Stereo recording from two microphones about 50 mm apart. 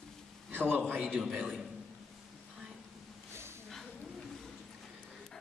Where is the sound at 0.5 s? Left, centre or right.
Right.